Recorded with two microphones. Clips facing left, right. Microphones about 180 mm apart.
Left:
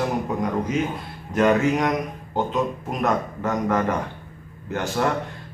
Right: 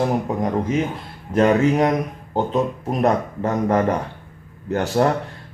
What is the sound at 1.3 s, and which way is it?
Speech, 30° right (ahead or behind).